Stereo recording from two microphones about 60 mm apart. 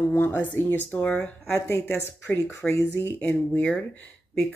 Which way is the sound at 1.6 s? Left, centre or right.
Left.